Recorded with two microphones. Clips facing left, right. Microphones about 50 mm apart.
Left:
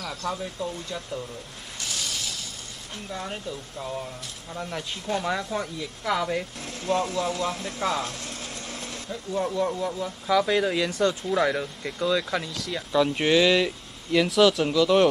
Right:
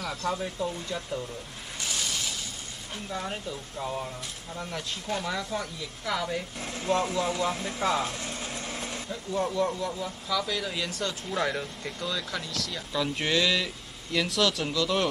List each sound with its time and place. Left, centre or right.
0.0 s speech: centre
1.9 s a sound: centre
3.1 s speech: centre
4.6 s speech: centre
6.6 s speech: centre
10.2 s speech: left
10.9 s speech: centre